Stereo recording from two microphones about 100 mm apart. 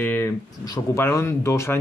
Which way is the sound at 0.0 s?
20° left (ahead or behind).